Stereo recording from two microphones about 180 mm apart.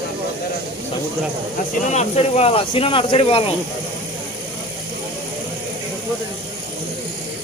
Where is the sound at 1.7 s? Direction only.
40° left (ahead or behind).